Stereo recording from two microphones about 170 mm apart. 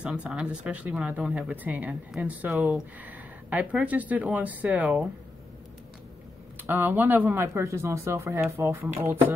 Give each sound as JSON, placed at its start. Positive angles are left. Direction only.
{"t": 0.0, "sound": "speech", "side_deg": -5}
{"t": 6.6, "sound": "speech", "side_deg": -10}